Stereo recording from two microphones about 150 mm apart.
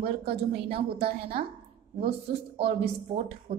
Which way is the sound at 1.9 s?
40° right (ahead or behind).